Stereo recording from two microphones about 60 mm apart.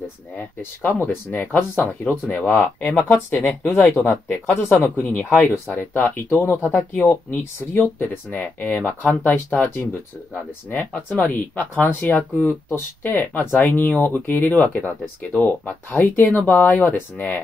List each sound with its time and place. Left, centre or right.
0.6 s speech: left
1.9 s speech: left
7.7 s speech: left; by 9.7 s centre
10.7 s speech: left